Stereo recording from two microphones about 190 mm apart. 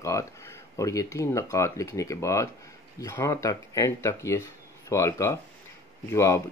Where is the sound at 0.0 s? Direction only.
15° left (ahead or behind).